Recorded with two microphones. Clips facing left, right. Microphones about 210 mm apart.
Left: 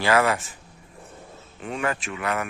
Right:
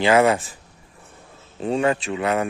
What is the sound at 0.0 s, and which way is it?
Speech, 20° right (ahead or behind).